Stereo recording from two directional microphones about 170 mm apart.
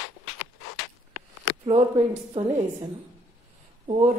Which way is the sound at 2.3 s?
35° right (ahead or behind).